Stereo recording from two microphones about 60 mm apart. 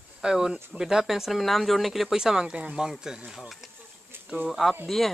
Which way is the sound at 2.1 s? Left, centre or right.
Centre.